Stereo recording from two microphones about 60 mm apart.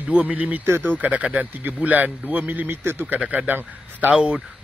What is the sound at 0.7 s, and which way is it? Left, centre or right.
Speech, right.